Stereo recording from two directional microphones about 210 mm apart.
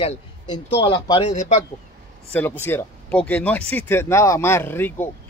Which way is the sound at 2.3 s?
10° left (ahead or behind).